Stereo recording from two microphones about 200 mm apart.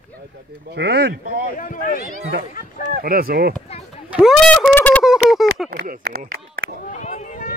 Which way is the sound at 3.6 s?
30° left (ahead or behind).